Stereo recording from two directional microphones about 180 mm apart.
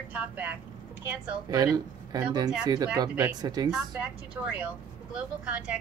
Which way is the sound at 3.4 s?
20° right (ahead or behind).